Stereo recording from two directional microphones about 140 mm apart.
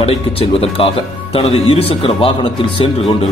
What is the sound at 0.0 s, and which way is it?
A man's voice, 45° left (ahead or behind).